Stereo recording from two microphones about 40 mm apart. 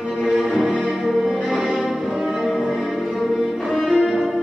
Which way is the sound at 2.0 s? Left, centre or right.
Centre.